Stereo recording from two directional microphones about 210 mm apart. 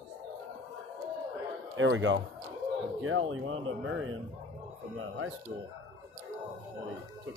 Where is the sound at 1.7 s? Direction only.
65° right (ahead or behind).